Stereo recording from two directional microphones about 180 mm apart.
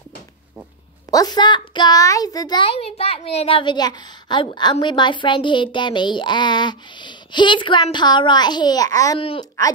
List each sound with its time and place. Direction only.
1.1 s a child's voice: 20° left (ahead or behind)
9.2 s speech: 30° left (ahead or behind)